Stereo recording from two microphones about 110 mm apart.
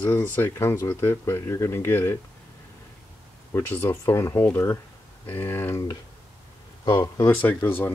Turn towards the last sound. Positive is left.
turn(degrees=15)  # may be behind; listen again after turning